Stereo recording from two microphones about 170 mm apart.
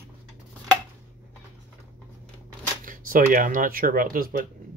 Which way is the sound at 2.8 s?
55° right (ahead or behind).